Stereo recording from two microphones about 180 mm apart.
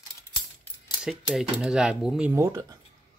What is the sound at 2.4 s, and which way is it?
Speech, 20° right (ahead or behind).